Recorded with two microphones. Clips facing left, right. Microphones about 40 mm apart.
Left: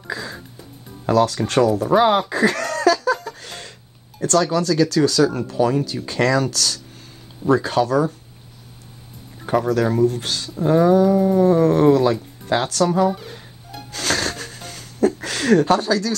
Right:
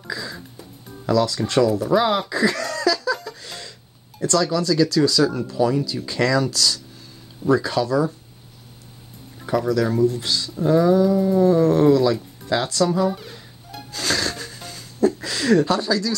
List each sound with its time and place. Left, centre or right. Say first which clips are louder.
0.1 s music: left 1 dB; left
1.0 s speech: left 2 dB; left
2.2 s music: left 2 dB; left
4.2 s speech: left 2 dB; left
9.5 s speech: left 2 dB; left
13.9 s wheeze: left 1 dB; left